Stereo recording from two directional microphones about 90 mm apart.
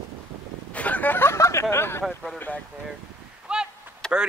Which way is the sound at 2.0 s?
Centre (ahead or behind).